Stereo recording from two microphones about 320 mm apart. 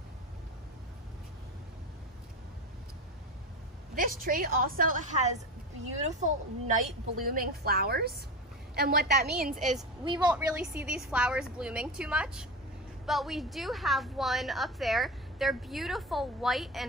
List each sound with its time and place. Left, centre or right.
3.9 s a woman's voice: right
9.6 s a woman's voice: centre
10.0 s a woman's voice: centre